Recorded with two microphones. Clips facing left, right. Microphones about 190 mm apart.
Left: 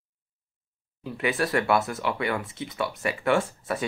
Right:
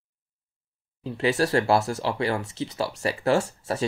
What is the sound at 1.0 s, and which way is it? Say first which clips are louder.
Speech: right 3 dB; 30° right (ahead or behind).